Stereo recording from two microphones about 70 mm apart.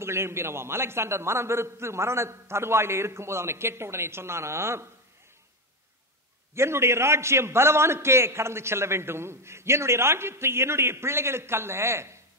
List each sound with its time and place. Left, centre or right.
0.0 s a man's voice: right
6.5 s a man's voice: right